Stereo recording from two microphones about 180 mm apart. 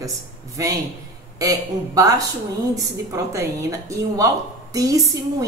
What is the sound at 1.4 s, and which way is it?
Speech, 20° right (ahead or behind).